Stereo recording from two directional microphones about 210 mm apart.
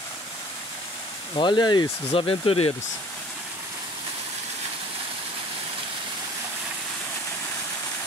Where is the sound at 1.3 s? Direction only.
20° left (ahead or behind).